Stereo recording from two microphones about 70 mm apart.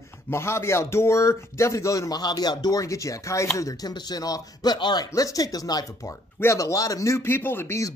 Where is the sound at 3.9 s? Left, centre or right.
Left.